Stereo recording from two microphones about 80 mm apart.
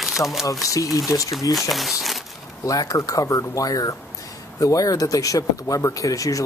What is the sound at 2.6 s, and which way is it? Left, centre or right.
Speech, left.